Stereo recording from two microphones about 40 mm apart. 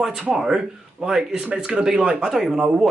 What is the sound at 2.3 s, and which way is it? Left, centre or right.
Speech, centre.